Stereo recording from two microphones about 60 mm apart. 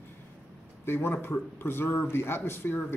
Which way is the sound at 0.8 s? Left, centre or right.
Left.